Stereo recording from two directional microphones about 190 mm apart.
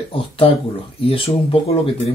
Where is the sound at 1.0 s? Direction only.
30° left (ahead or behind).